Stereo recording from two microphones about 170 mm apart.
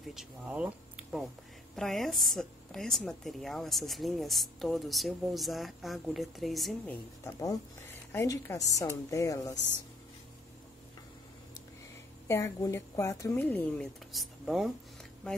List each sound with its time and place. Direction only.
0.0 s a woman's voice: centre (ahead or behind)
7.2 s a woman's voice: 15° left (ahead or behind)
12.3 s speech: 15° left (ahead or behind); by 14.7 s centre (ahead or behind)